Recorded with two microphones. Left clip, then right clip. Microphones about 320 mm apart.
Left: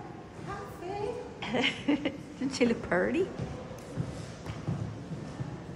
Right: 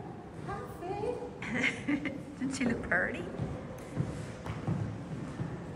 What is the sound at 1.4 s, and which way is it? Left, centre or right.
A woman's voice, centre.